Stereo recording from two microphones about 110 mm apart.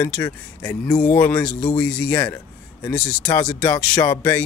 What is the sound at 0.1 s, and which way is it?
Speech, 20° left (ahead or behind).